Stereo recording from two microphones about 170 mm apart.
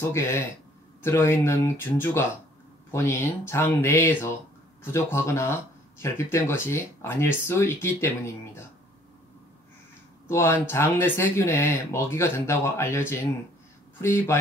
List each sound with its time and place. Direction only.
0.1 s speech: 15° left (ahead or behind)
10.2 s speech: 15° left (ahead or behind)